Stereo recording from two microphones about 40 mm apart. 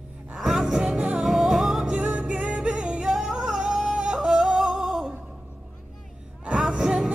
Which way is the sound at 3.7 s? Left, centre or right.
Centre.